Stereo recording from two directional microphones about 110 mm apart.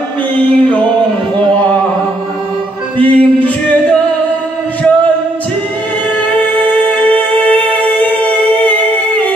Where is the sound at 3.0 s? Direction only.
15° left (ahead or behind).